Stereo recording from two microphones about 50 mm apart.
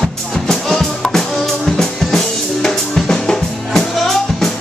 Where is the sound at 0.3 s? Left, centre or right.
Centre.